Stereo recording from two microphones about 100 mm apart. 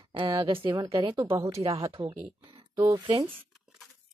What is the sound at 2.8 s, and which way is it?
Speech, 45° right (ahead or behind).